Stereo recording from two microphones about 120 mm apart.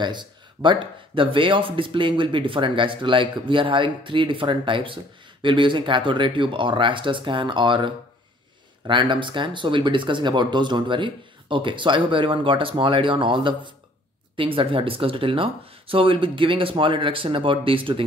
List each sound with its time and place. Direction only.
0.0 s speech: 40° right (ahead or behind)